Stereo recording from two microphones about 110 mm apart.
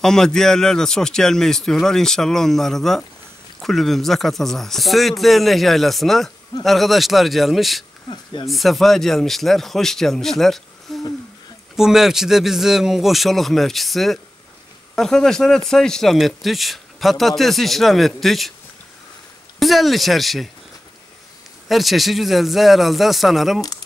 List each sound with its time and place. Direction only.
0.0 s a man's voice: 5° left (ahead or behind)
8.1 s speech: 45° left (ahead or behind)
8.5 s a man's voice: centre (ahead or behind)
10.9 s a sound: centre (ahead or behind)
11.7 s a man's voice: 5° right (ahead or behind)
19.6 s a man's voice: centre (ahead or behind)
21.6 s a man's voice: centre (ahead or behind)